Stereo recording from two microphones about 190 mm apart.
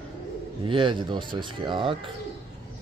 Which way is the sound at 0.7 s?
25° right (ahead or behind).